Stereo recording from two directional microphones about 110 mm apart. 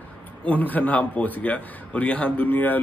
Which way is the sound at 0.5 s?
15° left (ahead or behind).